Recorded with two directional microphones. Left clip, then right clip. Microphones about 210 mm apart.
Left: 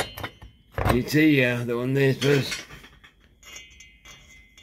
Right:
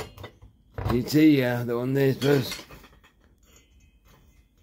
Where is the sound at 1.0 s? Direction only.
10° right (ahead or behind).